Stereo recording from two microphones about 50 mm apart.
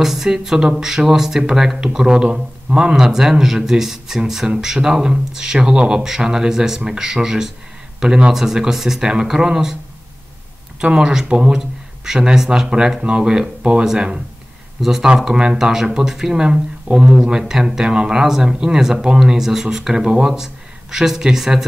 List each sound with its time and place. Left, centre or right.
0.0 s speech: centre
10.8 s speech: centre
16.4 s speech: centre
17.4 s speech: centre